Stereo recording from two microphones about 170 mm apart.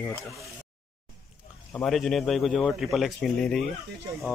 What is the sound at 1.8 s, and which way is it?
Speech, centre (ahead or behind).